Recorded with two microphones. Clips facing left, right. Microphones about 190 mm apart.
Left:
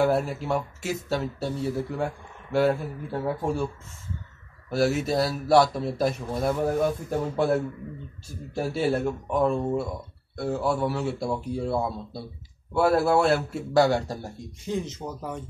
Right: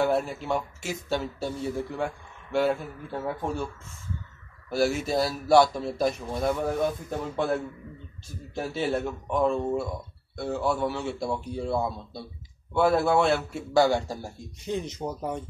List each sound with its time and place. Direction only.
0.0 s a man's voice: 5° left (ahead or behind)
4.6 s a man's voice: centre (ahead or behind)
8.5 s a man's voice: 5° left (ahead or behind)
15.0 s speech: 20° right (ahead or behind)